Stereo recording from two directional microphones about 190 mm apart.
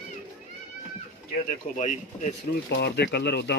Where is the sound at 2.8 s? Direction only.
60° left (ahead or behind).